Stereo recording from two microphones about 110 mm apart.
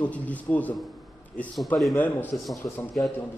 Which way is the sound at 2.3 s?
Centre (ahead or behind).